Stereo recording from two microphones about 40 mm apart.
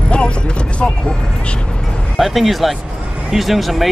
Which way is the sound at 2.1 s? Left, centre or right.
Centre.